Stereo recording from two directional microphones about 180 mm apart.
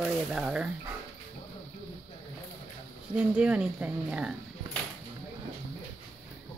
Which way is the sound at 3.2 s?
5° right (ahead or behind).